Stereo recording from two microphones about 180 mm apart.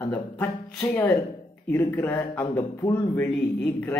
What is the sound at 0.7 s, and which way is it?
Speech, 10° left (ahead or behind).